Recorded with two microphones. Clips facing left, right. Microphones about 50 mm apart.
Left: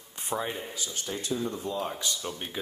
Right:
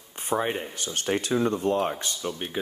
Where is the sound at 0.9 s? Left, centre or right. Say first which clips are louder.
Right 8 dB; right.